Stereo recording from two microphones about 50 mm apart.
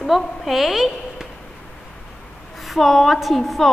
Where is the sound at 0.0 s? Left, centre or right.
Centre.